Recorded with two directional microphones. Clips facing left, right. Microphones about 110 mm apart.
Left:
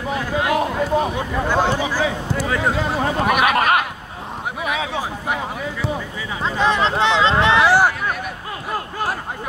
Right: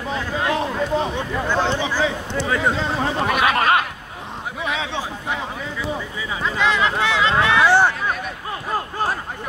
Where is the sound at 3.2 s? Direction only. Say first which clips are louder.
Left 2 dB; 65° left (ahead or behind).